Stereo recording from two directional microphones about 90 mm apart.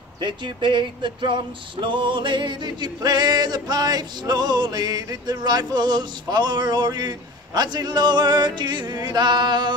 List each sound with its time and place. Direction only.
0.2 s music: 60° right (ahead or behind)